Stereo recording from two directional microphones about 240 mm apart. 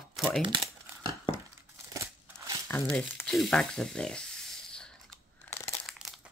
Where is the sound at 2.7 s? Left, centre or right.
Centre.